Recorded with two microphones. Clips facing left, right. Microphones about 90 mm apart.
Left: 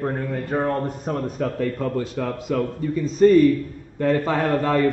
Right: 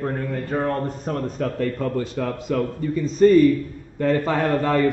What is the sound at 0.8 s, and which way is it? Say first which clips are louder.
Speech: even; 10° left (ahead or behind).